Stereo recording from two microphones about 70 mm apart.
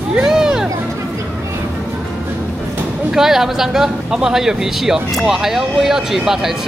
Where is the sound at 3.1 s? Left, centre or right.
Centre.